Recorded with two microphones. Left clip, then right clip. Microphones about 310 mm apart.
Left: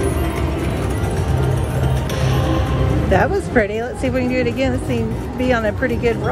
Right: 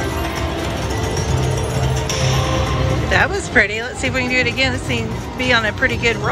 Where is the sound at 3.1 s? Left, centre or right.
Centre.